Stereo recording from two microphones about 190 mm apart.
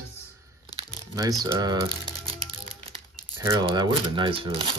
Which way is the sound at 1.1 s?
20° right (ahead or behind).